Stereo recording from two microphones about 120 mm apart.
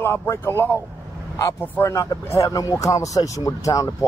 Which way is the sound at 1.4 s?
25° left (ahead or behind).